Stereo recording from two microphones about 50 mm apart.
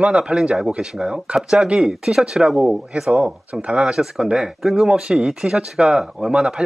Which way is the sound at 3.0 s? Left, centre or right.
Centre.